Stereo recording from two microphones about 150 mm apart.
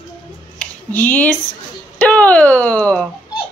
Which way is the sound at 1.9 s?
10° left (ahead or behind).